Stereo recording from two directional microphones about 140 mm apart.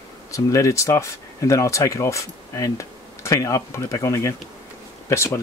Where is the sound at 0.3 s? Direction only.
25° left (ahead or behind).